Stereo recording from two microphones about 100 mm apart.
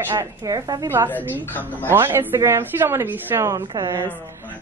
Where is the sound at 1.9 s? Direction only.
20° right (ahead or behind).